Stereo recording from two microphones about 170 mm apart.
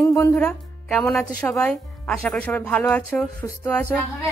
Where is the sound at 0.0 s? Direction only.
20° left (ahead or behind).